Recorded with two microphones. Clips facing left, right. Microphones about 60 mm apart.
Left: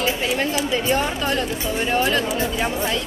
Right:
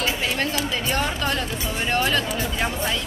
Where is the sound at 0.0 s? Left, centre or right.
Centre.